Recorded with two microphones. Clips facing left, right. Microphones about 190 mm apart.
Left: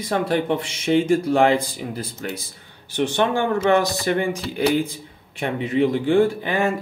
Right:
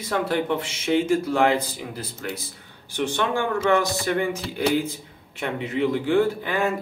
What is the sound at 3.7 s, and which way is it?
Speech, 20° left (ahead or behind).